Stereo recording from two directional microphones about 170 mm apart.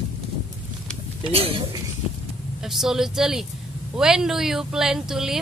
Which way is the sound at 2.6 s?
Centre (ahead or behind).